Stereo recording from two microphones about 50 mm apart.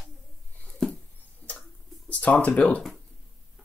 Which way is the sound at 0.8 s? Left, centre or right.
Centre.